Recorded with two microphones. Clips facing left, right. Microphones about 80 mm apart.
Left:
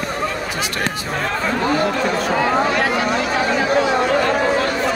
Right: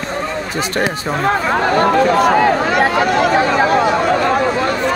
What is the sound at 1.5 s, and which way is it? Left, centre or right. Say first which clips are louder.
Speech: right 5 dB; right.